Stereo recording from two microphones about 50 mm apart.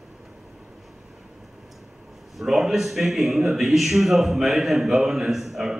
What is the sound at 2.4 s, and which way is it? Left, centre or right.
A man's voice, centre.